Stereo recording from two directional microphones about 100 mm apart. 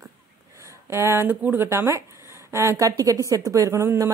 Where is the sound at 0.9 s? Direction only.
25° right (ahead or behind).